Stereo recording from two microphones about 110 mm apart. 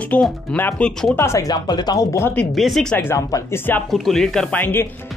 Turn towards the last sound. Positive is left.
turn(degrees=15)  # may be behind; listen again after turning